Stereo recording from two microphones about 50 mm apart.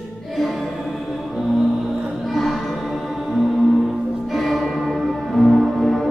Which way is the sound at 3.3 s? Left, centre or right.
Centre.